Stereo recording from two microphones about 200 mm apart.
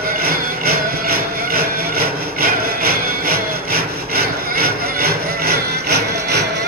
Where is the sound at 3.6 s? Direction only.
50° right (ahead or behind).